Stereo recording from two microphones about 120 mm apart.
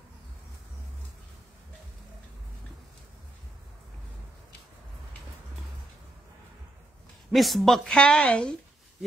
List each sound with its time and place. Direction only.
7.2 s a woman's voice: centre (ahead or behind)